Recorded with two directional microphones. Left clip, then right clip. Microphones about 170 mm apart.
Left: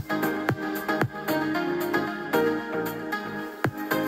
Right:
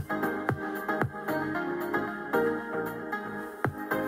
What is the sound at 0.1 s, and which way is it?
Music, 40° left (ahead or behind).